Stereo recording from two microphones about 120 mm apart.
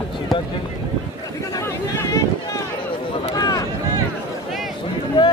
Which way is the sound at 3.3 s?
35° left (ahead or behind).